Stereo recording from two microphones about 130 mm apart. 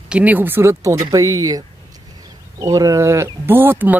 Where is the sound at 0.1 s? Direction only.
10° right (ahead or behind).